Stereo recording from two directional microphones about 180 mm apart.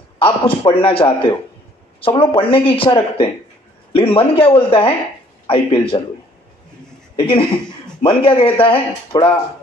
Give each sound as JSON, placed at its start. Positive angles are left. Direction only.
{"t": 0.2, "sound": "a man's voice", "side_deg": 30}
{"t": 7.2, "sound": "speech", "side_deg": 30}